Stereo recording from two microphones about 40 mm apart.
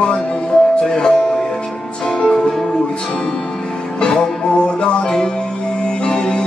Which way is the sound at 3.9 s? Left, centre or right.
Centre.